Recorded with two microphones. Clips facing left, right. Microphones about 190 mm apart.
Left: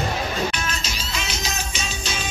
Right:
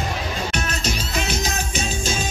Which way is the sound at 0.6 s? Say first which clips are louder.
Right 4 dB; 55° right (ahead or behind).